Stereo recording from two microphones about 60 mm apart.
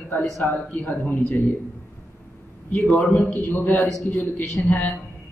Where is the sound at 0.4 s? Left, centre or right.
Left.